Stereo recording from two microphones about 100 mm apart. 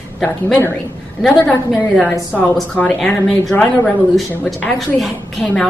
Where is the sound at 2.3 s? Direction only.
15° left (ahead or behind).